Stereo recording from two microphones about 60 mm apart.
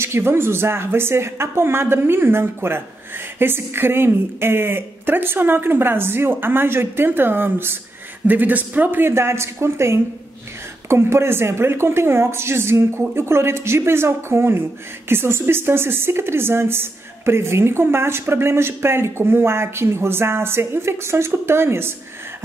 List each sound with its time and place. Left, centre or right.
0.0 s a woman's voice: right
9.1 s speech: right